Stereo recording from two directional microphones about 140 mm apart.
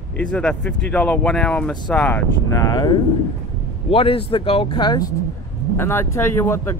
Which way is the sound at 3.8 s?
40° left (ahead or behind).